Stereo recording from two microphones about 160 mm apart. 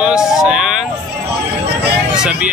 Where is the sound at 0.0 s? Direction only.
5° right (ahead or behind).